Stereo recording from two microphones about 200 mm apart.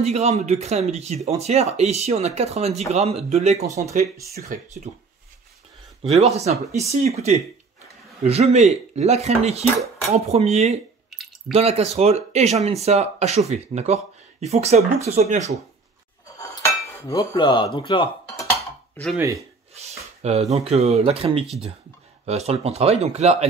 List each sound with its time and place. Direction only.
0.0 s speech: 35° right (ahead or behind)
6.0 s speech: 35° right (ahead or behind)
11.1 s drip: centre (ahead or behind)
11.5 s speech: 30° right (ahead or behind)
17.1 s cutlery: 20° left (ahead or behind)
17.7 s speech: 25° left (ahead or behind)
19.1 s speech: 15° right (ahead or behind)
19.7 s speech: 30° right (ahead or behind)